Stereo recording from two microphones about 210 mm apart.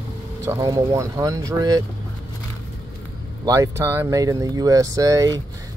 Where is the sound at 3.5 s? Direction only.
15° right (ahead or behind).